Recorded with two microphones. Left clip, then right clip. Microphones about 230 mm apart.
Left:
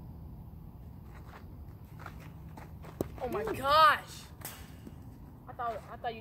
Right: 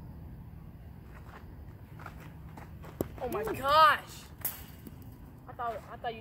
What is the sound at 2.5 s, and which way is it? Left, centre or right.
Clip-clop, centre.